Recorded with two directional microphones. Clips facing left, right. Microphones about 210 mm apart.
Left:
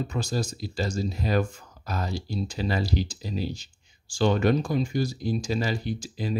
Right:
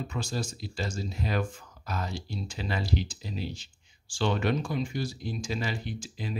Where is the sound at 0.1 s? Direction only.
40° left (ahead or behind).